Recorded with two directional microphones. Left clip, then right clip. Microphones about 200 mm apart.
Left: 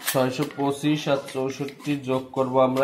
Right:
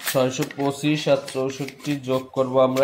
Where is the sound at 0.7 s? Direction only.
15° right (ahead or behind).